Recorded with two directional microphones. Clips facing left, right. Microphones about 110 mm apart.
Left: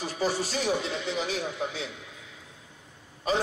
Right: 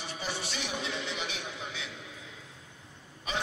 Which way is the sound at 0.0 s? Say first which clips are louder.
Left 9 dB; 40° left (ahead or behind).